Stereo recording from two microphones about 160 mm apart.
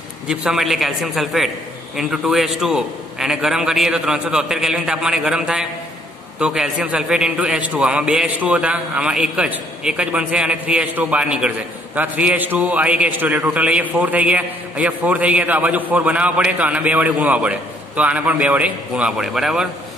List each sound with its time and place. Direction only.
0.3 s a man's voice: 5° right (ahead or behind)